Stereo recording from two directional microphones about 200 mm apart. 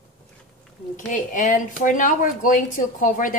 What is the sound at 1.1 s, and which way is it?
Speech, 40° left (ahead or behind).